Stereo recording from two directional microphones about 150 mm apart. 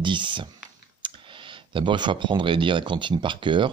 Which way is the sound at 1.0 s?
35° right (ahead or behind).